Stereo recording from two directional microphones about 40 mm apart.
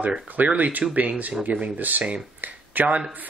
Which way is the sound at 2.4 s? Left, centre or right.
Right.